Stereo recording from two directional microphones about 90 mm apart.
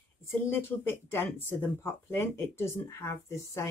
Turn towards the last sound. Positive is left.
turn(degrees=30)  # may be behind; listen again after turning